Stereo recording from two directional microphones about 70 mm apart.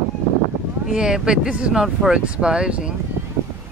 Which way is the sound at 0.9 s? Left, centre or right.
Centre.